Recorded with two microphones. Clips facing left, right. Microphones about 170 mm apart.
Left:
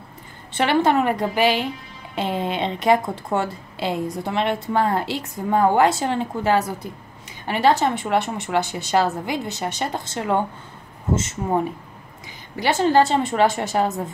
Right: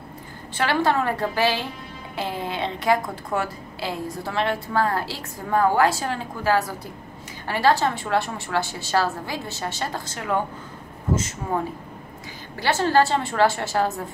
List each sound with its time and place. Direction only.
0.6 s a woman's voice: 20° left (ahead or behind)